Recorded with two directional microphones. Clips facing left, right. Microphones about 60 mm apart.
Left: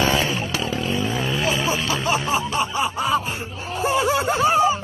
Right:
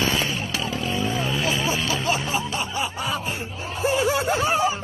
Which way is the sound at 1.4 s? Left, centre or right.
Centre.